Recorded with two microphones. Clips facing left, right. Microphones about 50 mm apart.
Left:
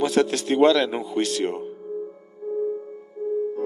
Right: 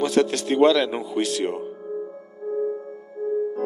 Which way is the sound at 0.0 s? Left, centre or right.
Centre.